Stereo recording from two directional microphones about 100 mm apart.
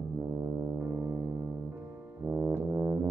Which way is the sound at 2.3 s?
25° right (ahead or behind).